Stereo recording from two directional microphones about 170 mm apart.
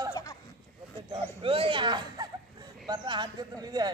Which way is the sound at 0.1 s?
20° left (ahead or behind).